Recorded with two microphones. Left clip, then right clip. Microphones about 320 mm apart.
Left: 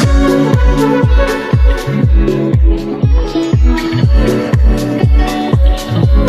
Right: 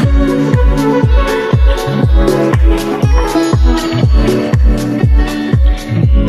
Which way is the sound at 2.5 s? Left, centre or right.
Right.